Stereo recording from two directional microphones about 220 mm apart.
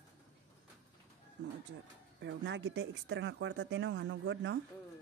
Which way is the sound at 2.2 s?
55° right (ahead or behind).